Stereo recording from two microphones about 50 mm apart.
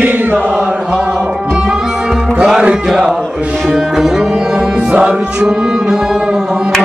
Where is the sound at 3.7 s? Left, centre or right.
Centre.